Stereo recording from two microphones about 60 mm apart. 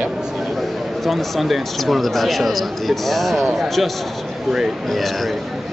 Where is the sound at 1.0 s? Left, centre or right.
Centre.